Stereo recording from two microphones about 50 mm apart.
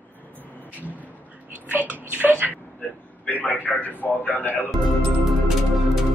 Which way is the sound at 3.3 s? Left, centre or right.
Left.